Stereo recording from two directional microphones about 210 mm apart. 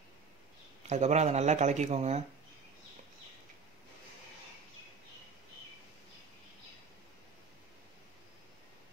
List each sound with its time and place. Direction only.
0.8 s speech: 35° right (ahead or behind)